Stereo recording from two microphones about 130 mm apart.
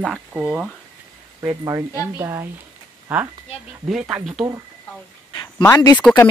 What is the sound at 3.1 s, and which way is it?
Speech, 10° right (ahead or behind).